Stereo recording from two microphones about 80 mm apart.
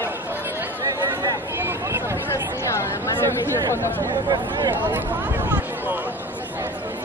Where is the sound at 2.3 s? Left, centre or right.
Left.